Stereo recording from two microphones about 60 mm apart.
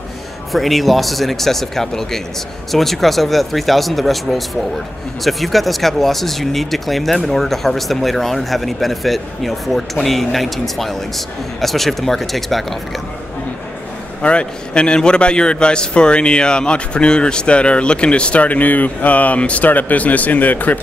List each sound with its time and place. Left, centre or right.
0.5 s speech: centre
14.2 s a man's voice: centre